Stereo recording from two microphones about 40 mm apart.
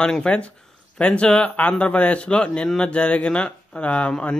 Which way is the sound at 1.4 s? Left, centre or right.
Left.